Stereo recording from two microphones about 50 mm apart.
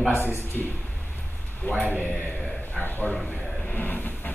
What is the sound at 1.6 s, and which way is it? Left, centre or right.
Train, left.